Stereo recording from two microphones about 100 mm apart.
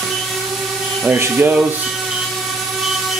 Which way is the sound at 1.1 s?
20° right (ahead or behind).